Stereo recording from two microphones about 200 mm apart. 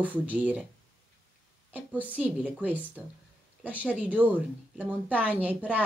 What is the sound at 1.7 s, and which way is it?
A woman's voice, 10° right (ahead or behind).